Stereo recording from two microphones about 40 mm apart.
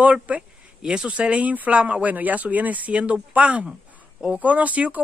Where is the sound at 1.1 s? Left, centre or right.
Right.